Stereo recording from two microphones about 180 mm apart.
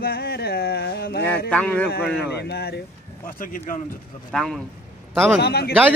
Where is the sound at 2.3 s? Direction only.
65° left (ahead or behind).